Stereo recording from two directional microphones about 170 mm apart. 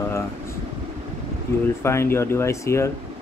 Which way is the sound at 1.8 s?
15° left (ahead or behind).